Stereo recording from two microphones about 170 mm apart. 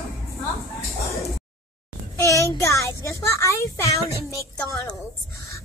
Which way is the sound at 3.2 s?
20° left (ahead or behind).